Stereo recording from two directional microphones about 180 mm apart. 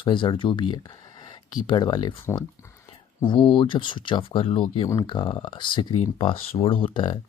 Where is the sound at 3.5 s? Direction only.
25° left (ahead or behind).